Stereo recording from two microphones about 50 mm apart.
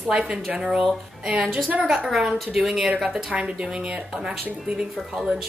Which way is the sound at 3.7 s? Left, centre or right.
Centre.